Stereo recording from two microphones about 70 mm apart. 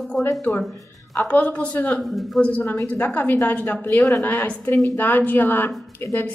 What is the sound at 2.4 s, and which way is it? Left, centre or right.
A woman's voice, left.